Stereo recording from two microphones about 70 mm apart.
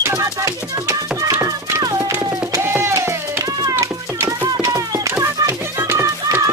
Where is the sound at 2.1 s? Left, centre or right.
Right.